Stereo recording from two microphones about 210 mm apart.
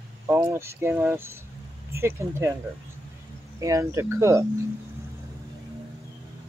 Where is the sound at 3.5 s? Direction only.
15° right (ahead or behind).